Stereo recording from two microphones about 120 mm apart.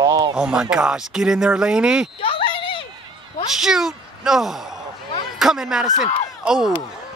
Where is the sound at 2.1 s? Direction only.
45° left (ahead or behind).